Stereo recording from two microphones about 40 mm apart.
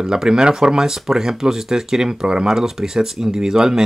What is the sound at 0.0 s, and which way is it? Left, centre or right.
Speech, centre.